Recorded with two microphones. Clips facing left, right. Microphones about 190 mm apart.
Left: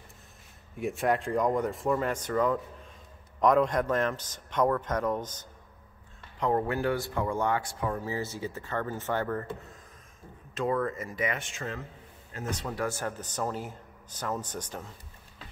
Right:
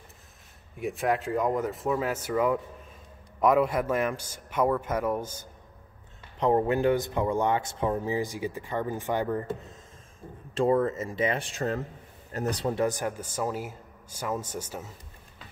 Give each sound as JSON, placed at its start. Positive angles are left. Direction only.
{"t": 0.7, "sound": "speech", "side_deg": 0}
{"t": 6.4, "sound": "speech", "side_deg": -20}
{"t": 10.5, "sound": "speech", "side_deg": -30}
{"t": 12.7, "sound": "speech", "side_deg": -15}